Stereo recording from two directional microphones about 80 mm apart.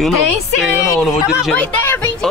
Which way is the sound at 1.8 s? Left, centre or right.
Left.